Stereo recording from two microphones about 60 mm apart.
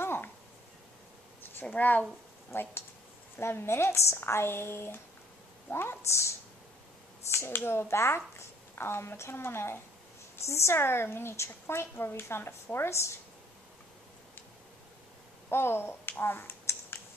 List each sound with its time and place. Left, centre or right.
0.0 s a sound: left
1.7 s speech: left
2.5 s a woman's voice: left
15.5 s speech: left